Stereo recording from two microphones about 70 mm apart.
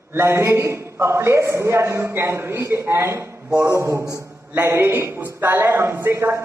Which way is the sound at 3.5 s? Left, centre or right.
Right.